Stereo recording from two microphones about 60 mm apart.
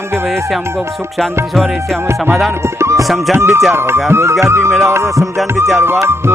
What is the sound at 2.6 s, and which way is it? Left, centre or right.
Music, right.